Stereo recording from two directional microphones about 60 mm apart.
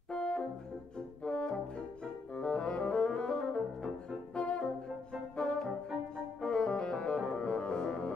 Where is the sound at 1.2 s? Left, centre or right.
Centre.